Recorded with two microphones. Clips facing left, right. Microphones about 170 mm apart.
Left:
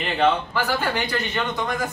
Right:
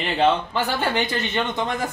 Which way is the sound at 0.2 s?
25° right (ahead or behind).